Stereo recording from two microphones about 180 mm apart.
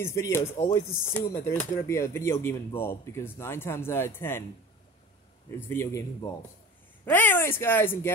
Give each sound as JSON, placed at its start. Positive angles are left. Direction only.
{"t": 0.0, "sound": "speech", "side_deg": 15}
{"t": 5.5, "sound": "speech", "side_deg": 15}